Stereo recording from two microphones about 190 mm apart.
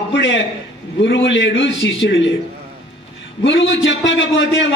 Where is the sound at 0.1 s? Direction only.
75° left (ahead or behind).